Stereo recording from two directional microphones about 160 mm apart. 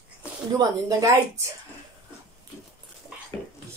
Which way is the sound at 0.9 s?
20° right (ahead or behind).